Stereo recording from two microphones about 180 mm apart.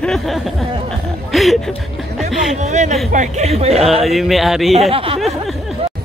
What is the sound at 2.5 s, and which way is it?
Speech, 40° right (ahead or behind).